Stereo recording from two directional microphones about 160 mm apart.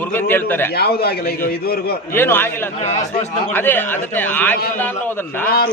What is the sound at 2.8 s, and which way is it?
Speech, 45° left (ahead or behind).